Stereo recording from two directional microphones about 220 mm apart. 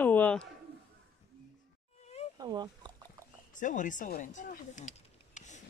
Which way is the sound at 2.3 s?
20° right (ahead or behind).